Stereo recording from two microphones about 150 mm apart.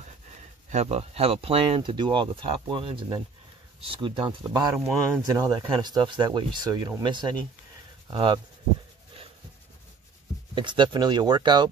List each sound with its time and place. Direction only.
0.7 s speech: 45° right (ahead or behind)
10.5 s speech: 30° right (ahead or behind)